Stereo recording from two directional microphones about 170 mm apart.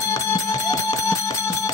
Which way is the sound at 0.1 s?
20° left (ahead or behind).